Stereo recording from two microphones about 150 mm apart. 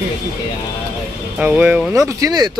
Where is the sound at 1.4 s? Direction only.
10° right (ahead or behind).